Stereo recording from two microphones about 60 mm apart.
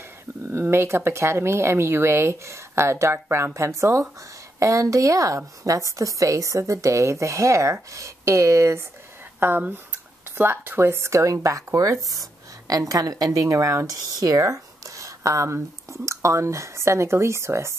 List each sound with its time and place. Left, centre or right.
0.5 s a woman's voice: right
9.4 s speech: right
11.4 s a woman's voice: right